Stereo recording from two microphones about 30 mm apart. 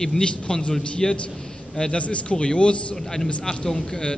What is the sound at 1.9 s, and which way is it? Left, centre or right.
Speech, left.